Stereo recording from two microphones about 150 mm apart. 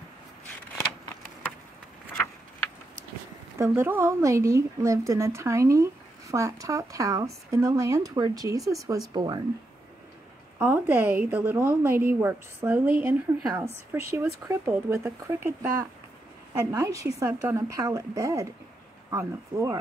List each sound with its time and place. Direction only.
3.5 s speech: 20° right (ahead or behind)
10.6 s a woman's voice: 15° right (ahead or behind)